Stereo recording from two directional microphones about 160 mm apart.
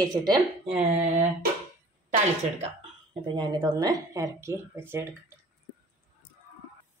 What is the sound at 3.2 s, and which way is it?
Speech, 30° right (ahead or behind).